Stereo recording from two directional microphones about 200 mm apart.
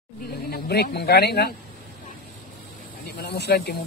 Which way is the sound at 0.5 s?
50° left (ahead or behind).